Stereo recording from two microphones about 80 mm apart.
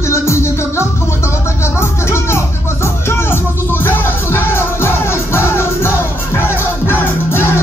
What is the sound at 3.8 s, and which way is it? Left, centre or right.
Music, left.